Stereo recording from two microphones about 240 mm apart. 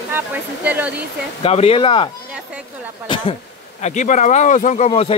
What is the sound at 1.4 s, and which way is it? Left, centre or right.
Speech, left.